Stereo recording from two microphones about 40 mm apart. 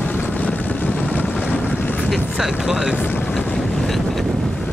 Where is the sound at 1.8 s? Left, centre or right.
Left.